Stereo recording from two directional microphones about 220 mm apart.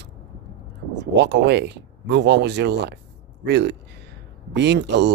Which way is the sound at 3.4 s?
50° right (ahead or behind).